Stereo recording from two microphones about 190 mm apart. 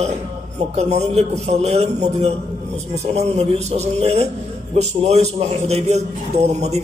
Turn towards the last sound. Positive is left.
turn(degrees=-35)  # may be behind; listen again after turning